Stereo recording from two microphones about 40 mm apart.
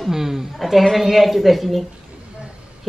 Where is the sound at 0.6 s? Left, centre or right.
Centre.